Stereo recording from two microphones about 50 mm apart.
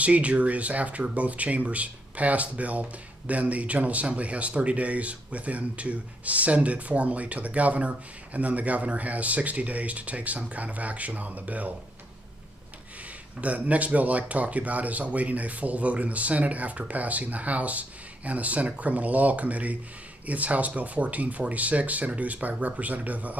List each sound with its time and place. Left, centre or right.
0.0 s speech: right
13.4 s speech: right